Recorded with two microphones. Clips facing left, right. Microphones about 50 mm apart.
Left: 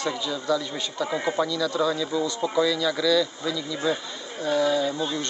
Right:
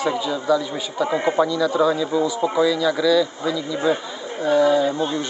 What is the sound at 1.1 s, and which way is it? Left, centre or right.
Speech, right.